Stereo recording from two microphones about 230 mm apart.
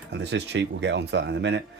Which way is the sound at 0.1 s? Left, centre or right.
Right.